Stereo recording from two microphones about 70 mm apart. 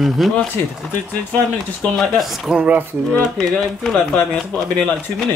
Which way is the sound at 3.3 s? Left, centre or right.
Centre.